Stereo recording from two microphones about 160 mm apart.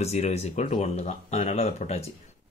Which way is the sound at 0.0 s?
40° left (ahead or behind).